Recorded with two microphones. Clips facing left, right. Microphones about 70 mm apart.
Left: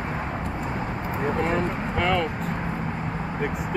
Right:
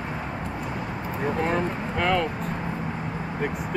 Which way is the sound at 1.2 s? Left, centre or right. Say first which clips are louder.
Even; centre.